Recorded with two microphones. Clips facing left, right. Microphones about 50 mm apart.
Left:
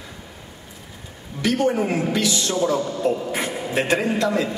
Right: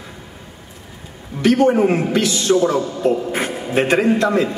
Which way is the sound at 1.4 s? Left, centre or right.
Right.